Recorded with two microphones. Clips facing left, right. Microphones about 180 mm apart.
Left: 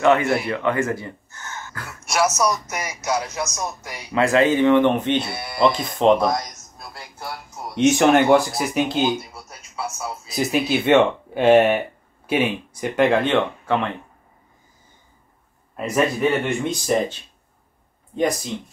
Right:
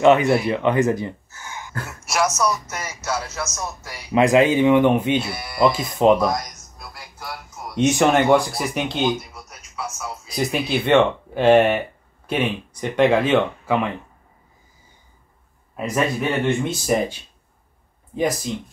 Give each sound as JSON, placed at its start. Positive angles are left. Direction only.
{"t": 0.0, "sound": "speech", "side_deg": -20}
{"t": 1.3, "sound": "gasp", "side_deg": -10}
{"t": 1.7, "sound": "speech", "side_deg": -25}
{"t": 2.0, "sound": "music", "side_deg": 0}
{"t": 2.7, "sound": "speech", "side_deg": 15}
{"t": 4.1, "sound": "speech", "side_deg": -15}
{"t": 5.2, "sound": "speech", "side_deg": 25}
{"t": 5.6, "sound": "speech", "side_deg": -5}
{"t": 7.7, "sound": "speech", "side_deg": 0}
{"t": 10.3, "sound": "speech", "side_deg": 0}
{"t": 15.7, "sound": "speech", "side_deg": 0}